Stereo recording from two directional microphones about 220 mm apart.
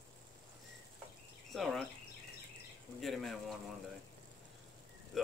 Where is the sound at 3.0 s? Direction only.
Centre (ahead or behind).